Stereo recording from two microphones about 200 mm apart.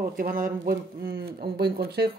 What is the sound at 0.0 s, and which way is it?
Speech, 45° right (ahead or behind).